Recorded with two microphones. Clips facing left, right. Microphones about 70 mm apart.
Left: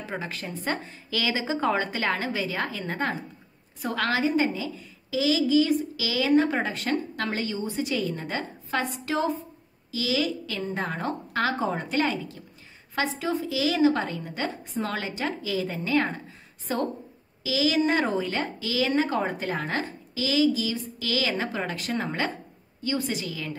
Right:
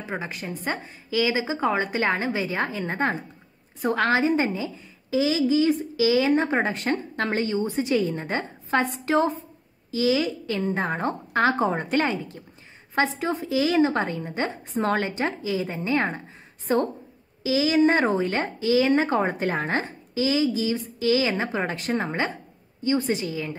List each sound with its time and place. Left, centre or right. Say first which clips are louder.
0.0 s a woman's voice: right 2 dB; centre; by 19.6 s right
19.6 s a woman's voice: right 3 dB; right